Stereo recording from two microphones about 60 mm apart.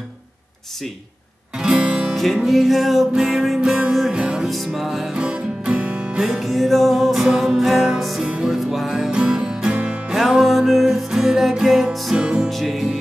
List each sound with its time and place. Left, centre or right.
1.6 s music: centre
2.3 s music: centre
4.5 s music: centre
5.1 s music: centre
6.2 s music: centre
10.1 s music: centre